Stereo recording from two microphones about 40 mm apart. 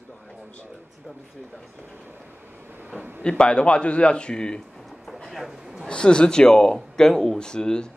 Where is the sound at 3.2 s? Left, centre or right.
Left.